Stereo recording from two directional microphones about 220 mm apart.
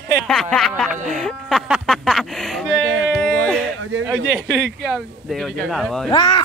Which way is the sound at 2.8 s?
60° right (ahead or behind).